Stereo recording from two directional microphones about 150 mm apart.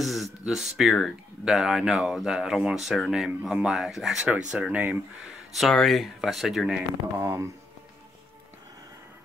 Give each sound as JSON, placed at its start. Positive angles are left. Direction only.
{"t": 0.0, "sound": "a sound", "side_deg": 0}
{"t": 0.5, "sound": "speech", "side_deg": 0}
{"t": 7.2, "sound": "speech", "side_deg": -20}